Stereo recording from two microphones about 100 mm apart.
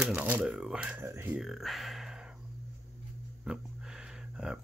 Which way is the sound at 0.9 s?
25° right (ahead or behind).